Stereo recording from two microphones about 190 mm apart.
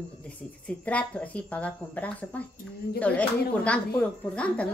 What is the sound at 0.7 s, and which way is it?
A woman's voice, 5° left (ahead or behind).